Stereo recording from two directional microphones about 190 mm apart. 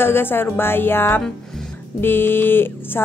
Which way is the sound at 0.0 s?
10° left (ahead or behind).